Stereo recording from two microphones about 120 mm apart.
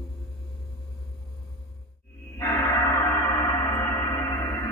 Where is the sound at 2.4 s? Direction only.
20° left (ahead or behind).